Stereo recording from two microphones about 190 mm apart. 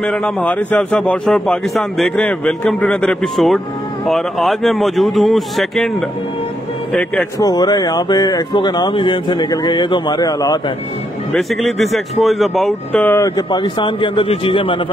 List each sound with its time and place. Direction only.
0.0 s a man's voice: 5° left (ahead or behind)
7.3 s speech: 20° left (ahead or behind)
11.3 s a man's voice: centre (ahead or behind)
13.5 s speech: 25° left (ahead or behind)